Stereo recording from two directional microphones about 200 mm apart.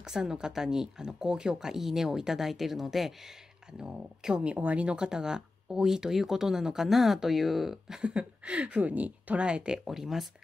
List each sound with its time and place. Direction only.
0.0 s speech: 5° right (ahead or behind)